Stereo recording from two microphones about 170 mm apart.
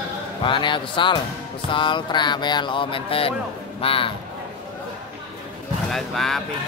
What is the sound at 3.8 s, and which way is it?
Speech, 30° left (ahead or behind).